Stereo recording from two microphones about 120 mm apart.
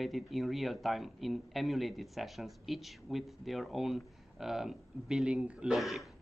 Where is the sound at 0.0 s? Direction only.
Centre (ahead or behind).